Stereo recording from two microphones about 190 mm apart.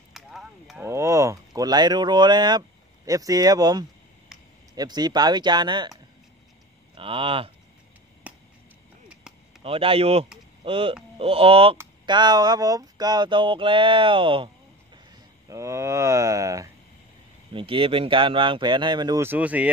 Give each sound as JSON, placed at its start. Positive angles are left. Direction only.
{"t": 0.1, "sound": "a sound", "side_deg": 0}
{"t": 0.8, "sound": "speech", "side_deg": -15}
{"t": 4.3, "sound": "a sound", "side_deg": -5}
{"t": 4.7, "sound": "speech", "side_deg": -20}
{"t": 7.0, "sound": "speech", "side_deg": -30}
{"t": 8.3, "sound": "a sound", "side_deg": -5}
{"t": 9.6, "sound": "speech", "side_deg": -30}
{"t": 15.0, "sound": "speech", "side_deg": -15}
{"t": 17.5, "sound": "speech", "side_deg": -25}